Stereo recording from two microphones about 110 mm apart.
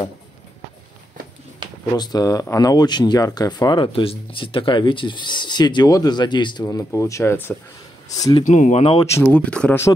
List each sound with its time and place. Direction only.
1.6 s a sound: 45° right (ahead or behind)
2.0 s speech: 40° left (ahead or behind)
6.6 s speech: 25° left (ahead or behind)
8.1 s speech: 35° left (ahead or behind)
8.5 s speech: 90° left
9.0 s speech: 25° left (ahead or behind)
9.3 s speech: 10° left (ahead or behind)